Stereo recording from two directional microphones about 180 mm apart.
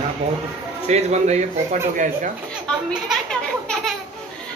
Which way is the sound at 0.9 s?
40° right (ahead or behind).